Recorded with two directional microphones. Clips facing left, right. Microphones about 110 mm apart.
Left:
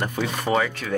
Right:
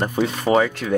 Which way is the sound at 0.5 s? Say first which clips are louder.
Right 5 dB; 25° right (ahead or behind).